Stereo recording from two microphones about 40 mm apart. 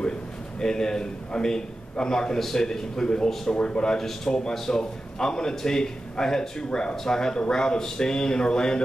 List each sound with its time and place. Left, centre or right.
0.6 s a man's voice: centre